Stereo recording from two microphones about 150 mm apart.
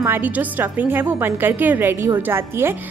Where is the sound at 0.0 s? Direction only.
15° right (ahead or behind).